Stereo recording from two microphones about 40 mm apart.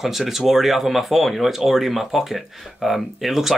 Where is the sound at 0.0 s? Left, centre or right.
Centre.